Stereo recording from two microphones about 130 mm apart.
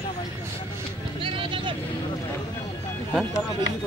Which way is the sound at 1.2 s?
40° right (ahead or behind).